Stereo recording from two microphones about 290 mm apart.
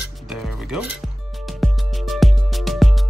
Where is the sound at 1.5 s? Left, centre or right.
Centre.